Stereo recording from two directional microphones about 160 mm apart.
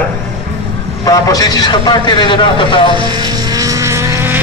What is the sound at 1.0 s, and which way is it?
A man's voice, 20° left (ahead or behind).